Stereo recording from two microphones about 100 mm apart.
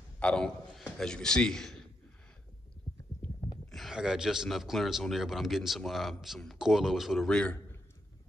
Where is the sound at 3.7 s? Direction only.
Centre (ahead or behind).